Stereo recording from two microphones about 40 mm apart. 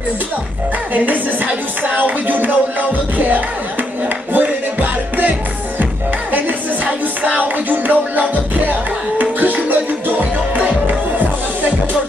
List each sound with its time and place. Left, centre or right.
0.9 s music: right
6.3 s music: right